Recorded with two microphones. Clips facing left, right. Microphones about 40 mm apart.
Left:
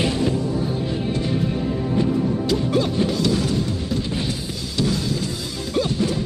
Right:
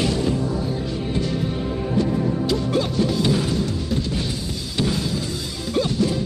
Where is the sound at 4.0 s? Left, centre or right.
Centre.